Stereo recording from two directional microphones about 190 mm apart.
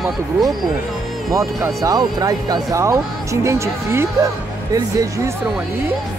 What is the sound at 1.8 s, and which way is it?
Speech, 20° right (ahead or behind).